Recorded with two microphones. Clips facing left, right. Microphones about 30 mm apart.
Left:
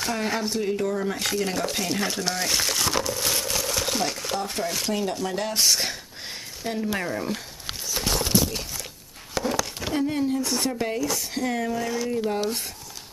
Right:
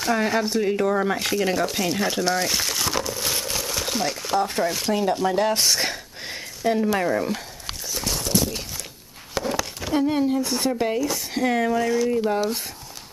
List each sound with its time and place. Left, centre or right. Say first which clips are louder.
0.0 s speech: right 5 dB; centre
0.7 s speech: right 4 dB; right
1.1 s speech: right 4 dB; centre
7.2 s a sound: right 2 dB; centre
7.9 s a sound: left 1 dB; centre
8.4 s a sound: even; centre
9.9 s speech: right 4 dB; centre
11.8 s speech: right 6 dB; centre
12.1 s speech: right 4 dB; centre